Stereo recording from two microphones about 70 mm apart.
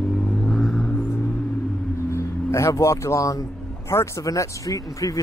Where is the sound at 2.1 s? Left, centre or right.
Left.